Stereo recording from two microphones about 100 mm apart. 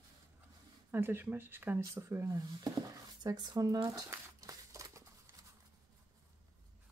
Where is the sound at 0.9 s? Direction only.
20° right (ahead or behind); by 4.0 s 40° right (ahead or behind).